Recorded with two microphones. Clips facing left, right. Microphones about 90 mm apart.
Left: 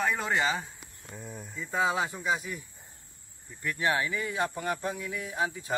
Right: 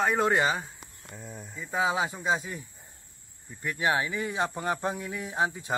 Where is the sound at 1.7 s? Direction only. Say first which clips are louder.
Right 1 dB; 15° right (ahead or behind).